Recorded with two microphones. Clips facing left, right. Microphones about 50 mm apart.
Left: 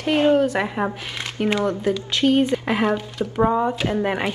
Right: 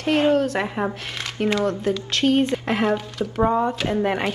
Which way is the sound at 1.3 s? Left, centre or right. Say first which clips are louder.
Even; centre.